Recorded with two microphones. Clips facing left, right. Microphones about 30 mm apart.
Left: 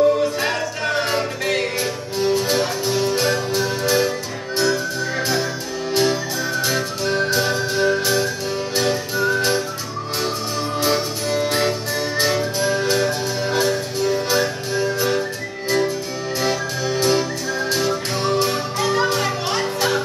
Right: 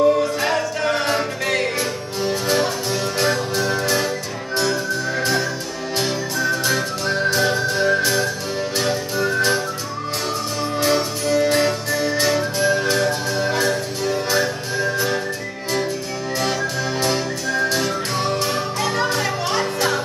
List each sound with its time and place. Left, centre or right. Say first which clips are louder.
0.4 s music: right 2 dB; centre
5.2 s music: right 1 dB; centre
10.9 s music: right 3 dB; centre
12.7 s music: even; centre
17.6 s music: even; centre